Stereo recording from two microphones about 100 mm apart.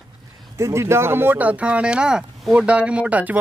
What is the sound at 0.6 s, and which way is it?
Speech, 30° right (ahead or behind).